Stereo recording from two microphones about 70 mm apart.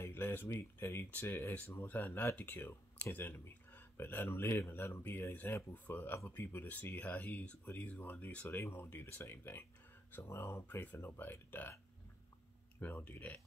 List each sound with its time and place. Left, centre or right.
0.0 s speech: left
1.9 s speech: left
12.8 s speech: left